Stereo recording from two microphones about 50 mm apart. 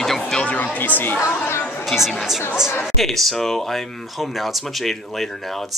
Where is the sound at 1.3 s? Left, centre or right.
Left.